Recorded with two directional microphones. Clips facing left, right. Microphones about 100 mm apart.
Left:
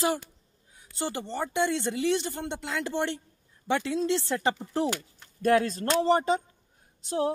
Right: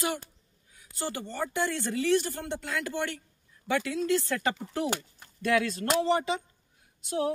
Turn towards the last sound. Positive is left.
turn(degrees=35)  # may be behind; listen again after turning